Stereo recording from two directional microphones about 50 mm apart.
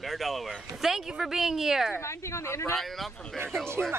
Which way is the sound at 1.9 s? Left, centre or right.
Left.